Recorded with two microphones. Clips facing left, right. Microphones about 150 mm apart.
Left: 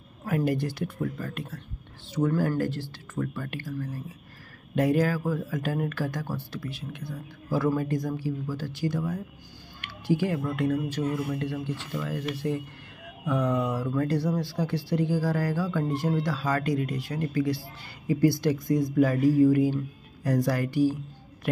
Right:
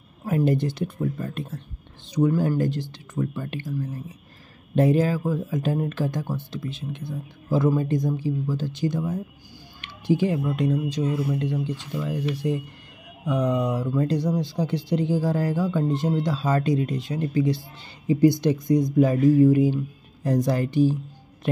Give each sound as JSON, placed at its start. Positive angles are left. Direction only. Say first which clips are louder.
{"t": 0.2, "sound": "speech", "louder": "right 4 dB", "side_deg": -20}